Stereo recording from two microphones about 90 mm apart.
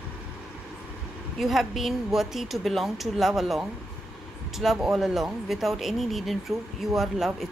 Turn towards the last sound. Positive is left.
turn(degrees=0)  # may be behind; listen again after turning